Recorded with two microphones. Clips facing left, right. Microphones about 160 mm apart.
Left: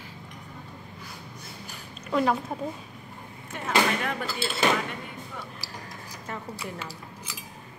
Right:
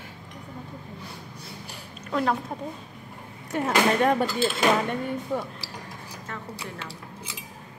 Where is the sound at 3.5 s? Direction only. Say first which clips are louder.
Right 3 dB; 40° right (ahead or behind).